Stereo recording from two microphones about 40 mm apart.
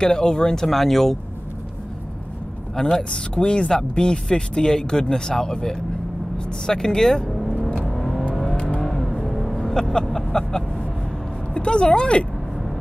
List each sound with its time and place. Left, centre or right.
0.0 s speech: centre
0.7 s speech: centre
2.7 s speech: centre
7.2 s vehicle: centre
10.0 s a sound: centre
11.5 s speech: left